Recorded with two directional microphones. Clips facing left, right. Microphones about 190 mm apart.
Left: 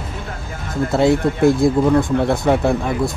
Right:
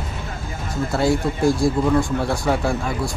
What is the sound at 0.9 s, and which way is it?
Speech, 20° left (ahead or behind).